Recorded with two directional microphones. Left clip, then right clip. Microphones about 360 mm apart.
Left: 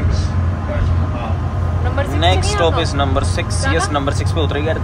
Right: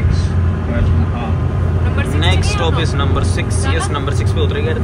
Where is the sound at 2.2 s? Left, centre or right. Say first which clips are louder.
Left 4 dB; centre.